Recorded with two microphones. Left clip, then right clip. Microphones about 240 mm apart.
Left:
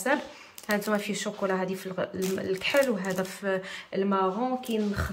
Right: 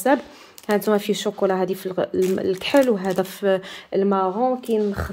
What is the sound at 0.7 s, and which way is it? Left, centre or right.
Speech, right.